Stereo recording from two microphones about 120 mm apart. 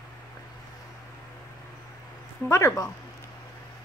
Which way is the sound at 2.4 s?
25° left (ahead or behind).